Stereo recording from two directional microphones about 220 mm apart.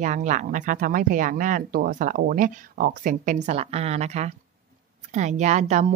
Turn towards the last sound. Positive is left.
turn(degrees=-35)  # may be behind; listen again after turning